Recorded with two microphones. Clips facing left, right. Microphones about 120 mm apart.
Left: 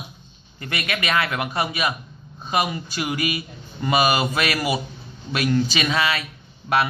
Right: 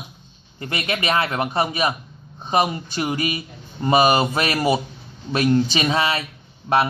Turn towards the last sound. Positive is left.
turn(degrees=-30)  # may be behind; listen again after turning